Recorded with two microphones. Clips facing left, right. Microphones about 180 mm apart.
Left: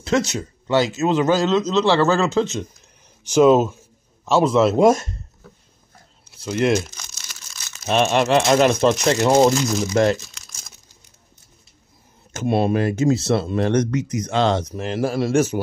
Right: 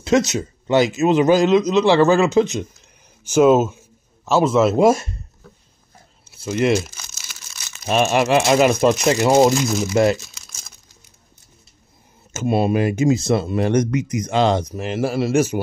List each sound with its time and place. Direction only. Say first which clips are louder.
0.0 s speech: right 3 dB; 20° right (ahead or behind)
3.3 s speech: even; 5° right (ahead or behind)
6.3 s crumpling: right 1 dB; 5° right (ahead or behind)
7.8 s speech: right 1 dB; 5° right (ahead or behind)
12.3 s speech: right 1 dB; 5° right (ahead or behind)